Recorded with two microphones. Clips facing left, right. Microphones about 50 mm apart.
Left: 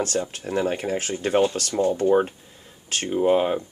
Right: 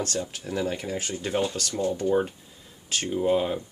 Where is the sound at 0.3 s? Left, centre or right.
Left.